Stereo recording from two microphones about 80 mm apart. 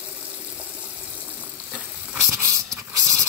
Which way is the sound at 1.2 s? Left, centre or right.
Centre.